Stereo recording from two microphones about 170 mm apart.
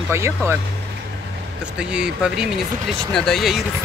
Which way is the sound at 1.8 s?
5° right (ahead or behind).